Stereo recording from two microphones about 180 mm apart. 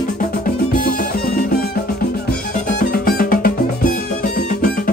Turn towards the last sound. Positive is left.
turn(degrees=50)  # may be behind; listen again after turning